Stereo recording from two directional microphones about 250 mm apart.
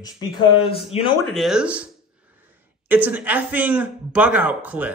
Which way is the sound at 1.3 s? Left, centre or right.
Centre.